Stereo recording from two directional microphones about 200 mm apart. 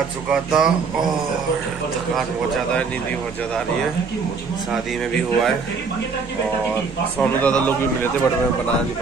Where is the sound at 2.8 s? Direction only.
5° left (ahead or behind).